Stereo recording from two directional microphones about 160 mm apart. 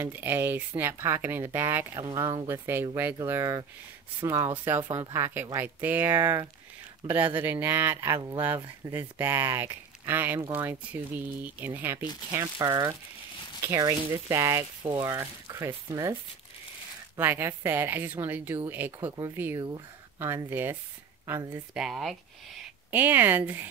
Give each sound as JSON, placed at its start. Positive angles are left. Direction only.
{"t": 0.0, "sound": "speech", "side_deg": -15}
{"t": 2.0, "sound": "speech", "side_deg": -25}
{"t": 4.6, "sound": "speech", "side_deg": -15}
{"t": 17.2, "sound": "speech", "side_deg": -15}